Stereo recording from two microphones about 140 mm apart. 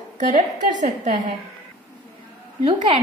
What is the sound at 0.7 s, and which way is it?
Speech, 65° right (ahead or behind).